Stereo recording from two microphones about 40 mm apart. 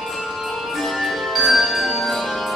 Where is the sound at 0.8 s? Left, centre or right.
Centre.